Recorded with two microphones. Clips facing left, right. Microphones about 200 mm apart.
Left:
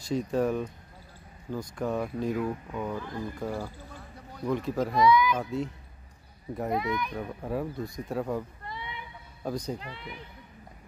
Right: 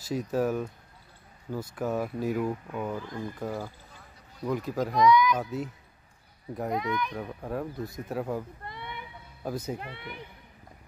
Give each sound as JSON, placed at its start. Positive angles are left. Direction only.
{"t": 0.0, "sound": "speech", "side_deg": -5}
{"t": 8.6, "sound": "a sound", "side_deg": -55}
{"t": 9.4, "sound": "speech", "side_deg": -5}
{"t": 9.8, "sound": "speech", "side_deg": -60}